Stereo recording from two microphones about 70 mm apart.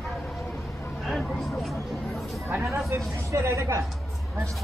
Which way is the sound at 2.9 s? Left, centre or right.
Right.